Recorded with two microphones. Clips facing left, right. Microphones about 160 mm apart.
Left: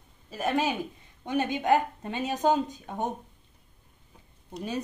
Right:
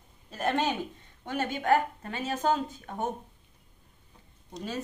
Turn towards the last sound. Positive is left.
turn(degrees=15)  # may be behind; listen again after turning